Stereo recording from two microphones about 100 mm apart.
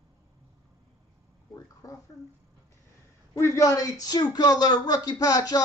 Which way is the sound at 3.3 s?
30° left (ahead or behind).